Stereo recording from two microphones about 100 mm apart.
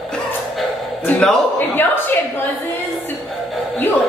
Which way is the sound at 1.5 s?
20° left (ahead or behind).